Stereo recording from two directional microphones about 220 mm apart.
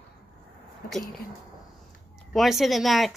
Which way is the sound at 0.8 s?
40° left (ahead or behind).